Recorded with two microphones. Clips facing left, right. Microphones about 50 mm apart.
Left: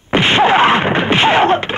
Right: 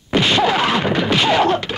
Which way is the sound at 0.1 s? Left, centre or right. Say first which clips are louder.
Left 4 dB; left.